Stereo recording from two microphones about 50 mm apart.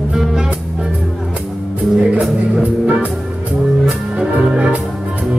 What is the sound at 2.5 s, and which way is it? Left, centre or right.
Music, right.